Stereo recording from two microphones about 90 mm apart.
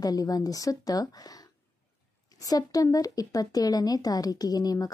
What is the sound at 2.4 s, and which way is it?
Speech, 40° left (ahead or behind).